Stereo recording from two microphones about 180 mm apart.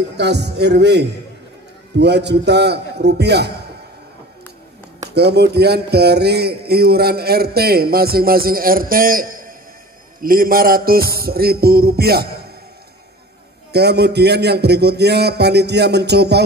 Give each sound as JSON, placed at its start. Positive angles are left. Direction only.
{"t": 0.2, "sound": "a man's voice", "side_deg": -70}
{"t": 5.1, "sound": "a man's voice", "side_deg": -65}
{"t": 13.7, "sound": "a man's voice", "side_deg": -65}